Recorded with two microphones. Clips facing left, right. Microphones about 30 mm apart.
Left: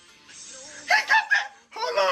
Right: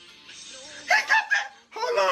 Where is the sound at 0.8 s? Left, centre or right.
Centre.